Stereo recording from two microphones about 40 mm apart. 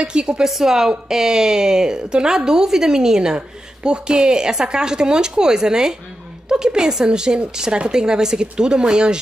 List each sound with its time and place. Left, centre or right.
0.0 s a woman's voice: right
0.5 s a woman's voice: centre